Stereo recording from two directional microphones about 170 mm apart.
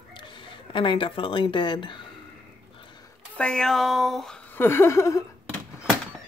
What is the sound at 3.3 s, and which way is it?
Speech, 5° left (ahead or behind).